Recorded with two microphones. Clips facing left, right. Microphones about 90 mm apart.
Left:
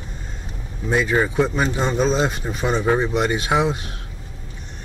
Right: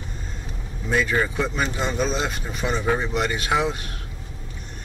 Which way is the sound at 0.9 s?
20° left (ahead or behind).